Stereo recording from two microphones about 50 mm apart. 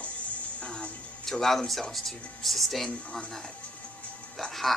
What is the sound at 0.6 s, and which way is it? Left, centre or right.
Speech, left.